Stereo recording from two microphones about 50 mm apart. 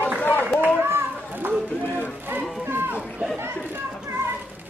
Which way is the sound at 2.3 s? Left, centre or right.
Right.